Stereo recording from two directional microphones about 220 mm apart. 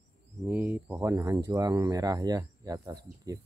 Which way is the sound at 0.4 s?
10° right (ahead or behind).